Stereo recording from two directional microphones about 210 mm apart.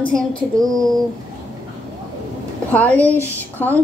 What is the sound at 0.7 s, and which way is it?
Speech, centre (ahead or behind).